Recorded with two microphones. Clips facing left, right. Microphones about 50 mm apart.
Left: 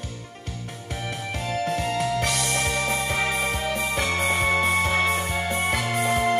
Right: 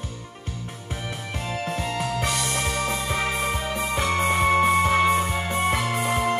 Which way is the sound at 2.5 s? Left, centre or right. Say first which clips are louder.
Left 1 dB; centre.